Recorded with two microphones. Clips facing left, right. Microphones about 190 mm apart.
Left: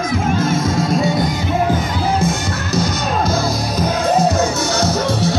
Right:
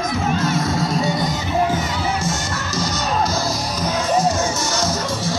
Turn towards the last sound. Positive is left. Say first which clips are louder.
# left 5 dB
turn(degrees=65)  # may be behind; listen again after turning